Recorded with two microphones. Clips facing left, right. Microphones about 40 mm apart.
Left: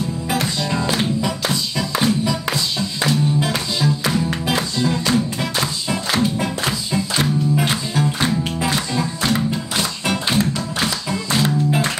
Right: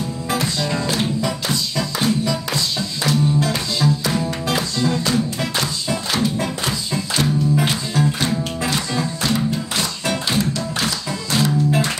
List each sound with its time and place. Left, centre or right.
0.3 s music: centre
7.9 s music: centre